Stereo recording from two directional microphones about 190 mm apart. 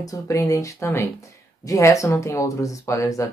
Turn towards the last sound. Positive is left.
turn(degrees=15)  # may be behind; listen again after turning